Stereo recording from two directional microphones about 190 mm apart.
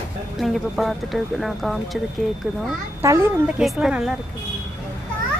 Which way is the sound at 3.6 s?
Centre (ahead or behind).